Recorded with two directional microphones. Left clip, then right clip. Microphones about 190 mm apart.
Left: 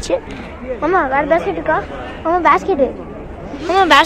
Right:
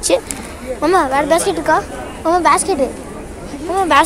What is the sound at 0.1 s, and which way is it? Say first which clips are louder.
Speech: right 3 dB; 40° right (ahead or behind).